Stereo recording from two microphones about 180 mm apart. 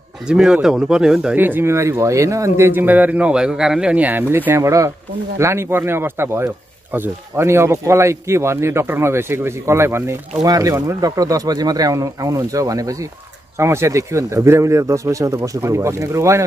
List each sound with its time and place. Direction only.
0.3 s speech: 5° right (ahead or behind)